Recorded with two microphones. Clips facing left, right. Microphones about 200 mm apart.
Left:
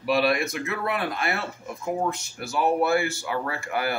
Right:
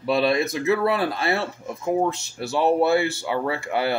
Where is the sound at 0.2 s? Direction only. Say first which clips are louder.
Right 3 dB; 25° right (ahead or behind).